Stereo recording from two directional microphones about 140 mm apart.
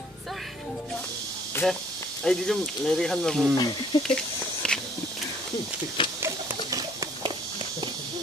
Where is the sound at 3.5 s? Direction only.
30° left (ahead or behind).